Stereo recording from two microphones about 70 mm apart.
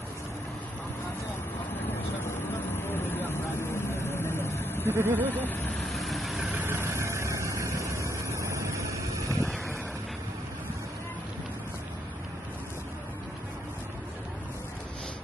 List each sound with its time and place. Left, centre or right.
2.8 s vehicle: left
4.8 s speech: right
5.8 s vehicle: centre
6.5 s vehicle: right